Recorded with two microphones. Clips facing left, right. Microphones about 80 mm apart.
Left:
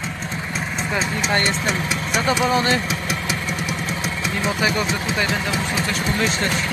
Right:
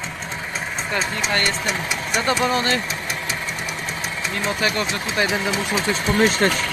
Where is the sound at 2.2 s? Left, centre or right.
Centre.